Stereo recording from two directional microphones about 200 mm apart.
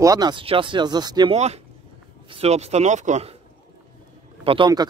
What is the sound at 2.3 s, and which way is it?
Speech, 30° right (ahead or behind).